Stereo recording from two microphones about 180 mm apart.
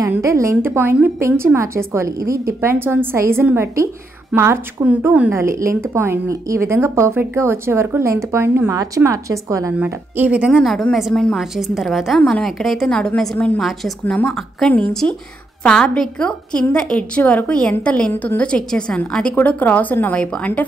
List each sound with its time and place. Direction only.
0.0 s a woman's voice: 15° right (ahead or behind); by 20.6 s 5° left (ahead or behind)